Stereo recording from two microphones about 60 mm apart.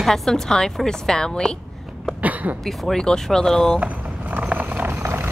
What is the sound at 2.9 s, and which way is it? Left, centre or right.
Speech, centre.